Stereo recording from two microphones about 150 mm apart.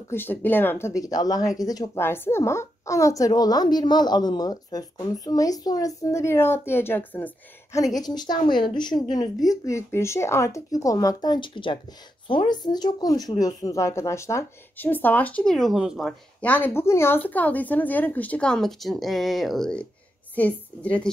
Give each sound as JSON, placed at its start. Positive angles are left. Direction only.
{"t": 0.1, "sound": "speech", "side_deg": 15}
{"t": 7.8, "sound": "speech", "side_deg": 25}